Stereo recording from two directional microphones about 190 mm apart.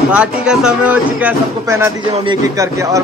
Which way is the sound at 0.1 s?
5° right (ahead or behind).